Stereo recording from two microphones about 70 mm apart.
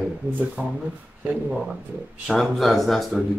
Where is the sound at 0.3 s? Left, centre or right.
Right.